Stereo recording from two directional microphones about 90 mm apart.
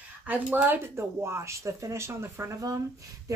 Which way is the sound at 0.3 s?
20° right (ahead or behind).